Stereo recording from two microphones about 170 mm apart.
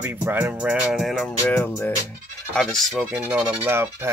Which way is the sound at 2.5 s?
Centre (ahead or behind).